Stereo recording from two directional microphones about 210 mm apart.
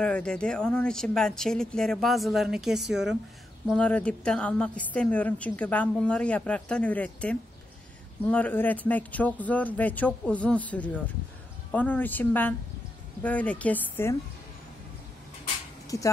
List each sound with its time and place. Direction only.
0.0 s a woman's voice: 5° left (ahead or behind)
15.9 s speech: 15° left (ahead or behind)